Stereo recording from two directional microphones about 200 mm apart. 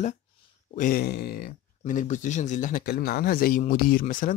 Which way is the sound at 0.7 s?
45° left (ahead or behind).